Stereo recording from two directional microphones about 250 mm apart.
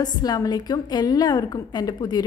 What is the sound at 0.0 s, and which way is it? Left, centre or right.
A woman's voice, centre.